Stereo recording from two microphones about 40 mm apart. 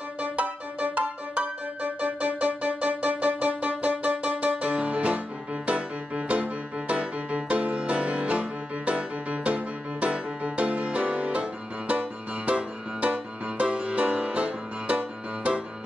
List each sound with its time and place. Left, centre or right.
0.2 s music: right